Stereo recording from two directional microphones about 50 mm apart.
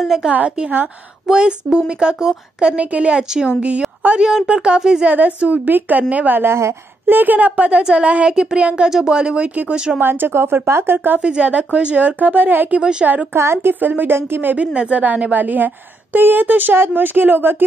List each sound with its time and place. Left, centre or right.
0.2 s a woman's voice: centre
4.1 s a woman's voice: centre
5.0 s a woman's voice: right
9.9 s speech: right
11.1 s speech: centre; by 12.6 s right
13.3 s a woman's voice: right
13.7 s a woman's voice: right
14.7 s a woman's voice: right